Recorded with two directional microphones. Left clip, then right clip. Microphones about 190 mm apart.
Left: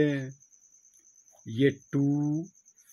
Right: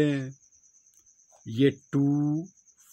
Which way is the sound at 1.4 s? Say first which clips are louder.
Right 2 dB; 40° right (ahead or behind).